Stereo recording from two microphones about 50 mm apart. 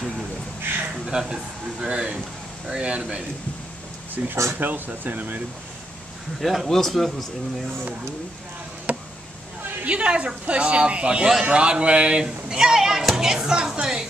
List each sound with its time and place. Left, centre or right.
0.6 s a sound: right
0.9 s speech: centre
4.2 s speech: right
6.4 s speech: centre
6.7 s speech: centre
8.9 s a sound: right
9.8 s speech: right